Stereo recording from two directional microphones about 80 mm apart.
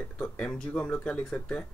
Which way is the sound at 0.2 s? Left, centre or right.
Centre.